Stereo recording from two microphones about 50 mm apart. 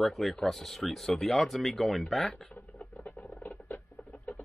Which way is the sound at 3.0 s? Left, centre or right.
Left.